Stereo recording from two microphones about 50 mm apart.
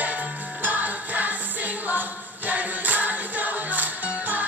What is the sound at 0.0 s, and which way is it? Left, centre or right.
Music, right.